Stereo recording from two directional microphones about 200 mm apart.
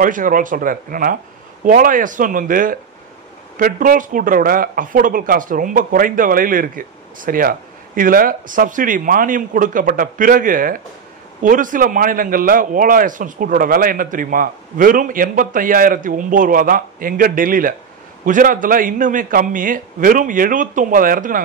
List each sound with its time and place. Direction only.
0.0 s a man's voice: 45° right (ahead or behind)